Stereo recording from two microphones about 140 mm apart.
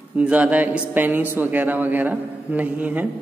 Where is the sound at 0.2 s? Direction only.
10° right (ahead or behind).